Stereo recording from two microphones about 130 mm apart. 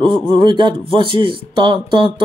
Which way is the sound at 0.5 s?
40° right (ahead or behind).